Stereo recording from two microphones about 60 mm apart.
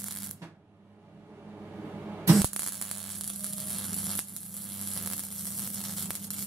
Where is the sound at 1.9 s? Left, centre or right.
Centre.